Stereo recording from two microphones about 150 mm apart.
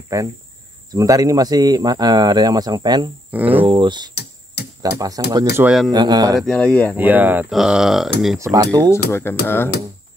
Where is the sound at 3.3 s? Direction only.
10° right (ahead or behind).